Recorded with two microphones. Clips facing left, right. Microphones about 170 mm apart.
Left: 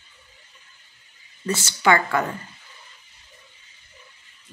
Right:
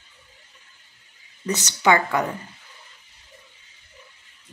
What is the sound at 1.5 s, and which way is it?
Speech, 20° right (ahead or behind).